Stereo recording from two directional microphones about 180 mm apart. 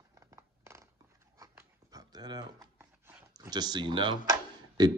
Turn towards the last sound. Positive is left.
turn(degrees=-20)  # may be behind; listen again after turning